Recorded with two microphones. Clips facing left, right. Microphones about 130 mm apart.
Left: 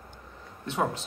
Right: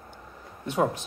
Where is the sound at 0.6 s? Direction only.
15° right (ahead or behind).